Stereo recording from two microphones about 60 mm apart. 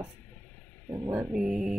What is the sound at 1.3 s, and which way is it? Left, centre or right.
Speech, centre.